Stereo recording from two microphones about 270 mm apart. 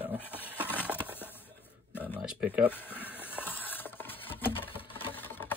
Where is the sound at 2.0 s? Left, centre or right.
Centre.